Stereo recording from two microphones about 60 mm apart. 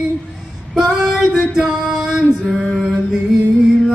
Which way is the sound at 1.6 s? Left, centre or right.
Centre.